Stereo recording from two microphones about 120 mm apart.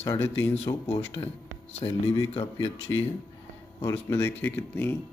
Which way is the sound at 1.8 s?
50° left (ahead or behind).